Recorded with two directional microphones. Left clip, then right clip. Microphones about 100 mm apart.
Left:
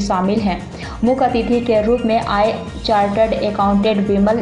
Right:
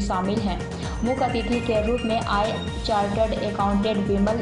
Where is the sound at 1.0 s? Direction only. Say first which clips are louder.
Left 9 dB; 5° right (ahead or behind).